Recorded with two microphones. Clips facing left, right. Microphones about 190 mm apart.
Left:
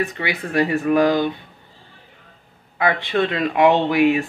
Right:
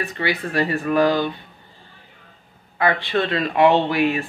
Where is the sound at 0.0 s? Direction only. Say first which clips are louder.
Even; 20° left (ahead or behind).